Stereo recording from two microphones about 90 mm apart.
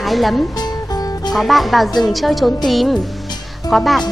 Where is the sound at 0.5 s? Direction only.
45° left (ahead or behind).